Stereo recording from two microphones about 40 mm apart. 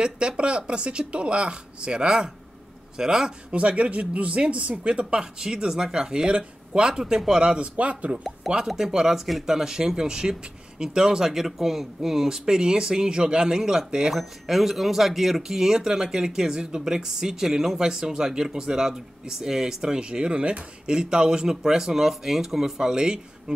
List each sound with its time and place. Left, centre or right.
0.4 s speech: right
3.5 s speech: right; by 7.5 s centre
7.5 s speech: right
8.6 s speech: centre